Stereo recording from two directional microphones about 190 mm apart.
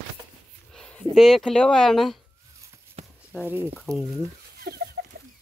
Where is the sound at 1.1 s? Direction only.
Centre (ahead or behind).